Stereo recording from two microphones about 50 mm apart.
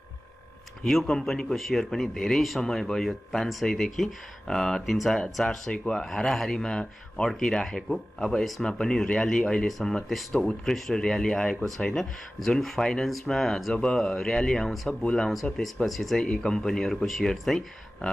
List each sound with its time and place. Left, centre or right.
0.8 s speech: centre
4.8 s speech: centre